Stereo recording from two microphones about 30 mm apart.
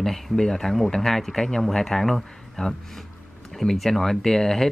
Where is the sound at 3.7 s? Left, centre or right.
Centre.